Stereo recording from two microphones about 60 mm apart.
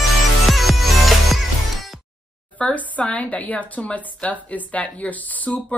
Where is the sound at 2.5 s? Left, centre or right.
Left.